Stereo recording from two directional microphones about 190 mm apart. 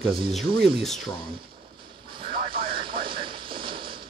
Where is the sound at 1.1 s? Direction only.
25° right (ahead or behind).